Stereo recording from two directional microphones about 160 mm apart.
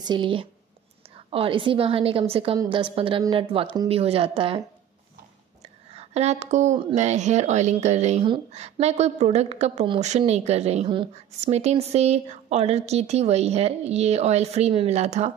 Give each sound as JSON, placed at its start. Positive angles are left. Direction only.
{"t": 0.0, "sound": "a woman's voice", "side_deg": -30}
{"t": 5.9, "sound": "a woman's voice", "side_deg": -40}